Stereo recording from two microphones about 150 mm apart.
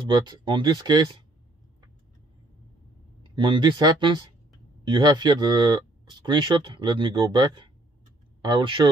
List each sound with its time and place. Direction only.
0.0 s speech: 30° right (ahead or behind)
3.3 s speech: 30° right (ahead or behind)